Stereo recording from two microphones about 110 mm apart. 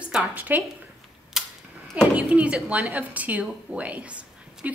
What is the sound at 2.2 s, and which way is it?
A woman's voice, 10° right (ahead or behind).